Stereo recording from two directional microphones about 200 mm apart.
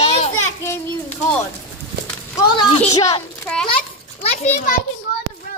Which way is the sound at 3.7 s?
30° left (ahead or behind).